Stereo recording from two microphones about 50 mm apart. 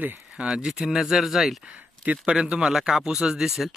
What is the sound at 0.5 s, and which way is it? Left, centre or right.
Speech, centre.